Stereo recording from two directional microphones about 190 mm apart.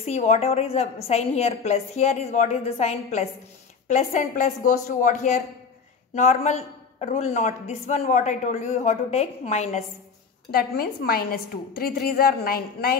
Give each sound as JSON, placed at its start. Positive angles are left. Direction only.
{"t": 0.0, "sound": "a woman's voice", "side_deg": 35}
{"t": 10.5, "sound": "a woman's voice", "side_deg": 55}